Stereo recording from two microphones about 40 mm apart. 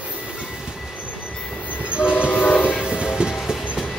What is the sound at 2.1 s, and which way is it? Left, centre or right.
Train, left.